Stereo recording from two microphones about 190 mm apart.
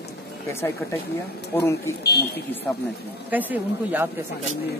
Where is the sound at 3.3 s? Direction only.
10° right (ahead or behind).